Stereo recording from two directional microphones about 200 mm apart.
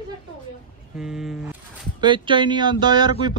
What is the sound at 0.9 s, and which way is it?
Speech, 5° right (ahead or behind).